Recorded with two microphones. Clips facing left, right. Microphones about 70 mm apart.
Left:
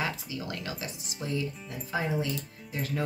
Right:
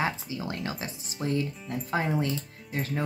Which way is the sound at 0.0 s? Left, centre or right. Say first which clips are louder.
Right 3 dB; right.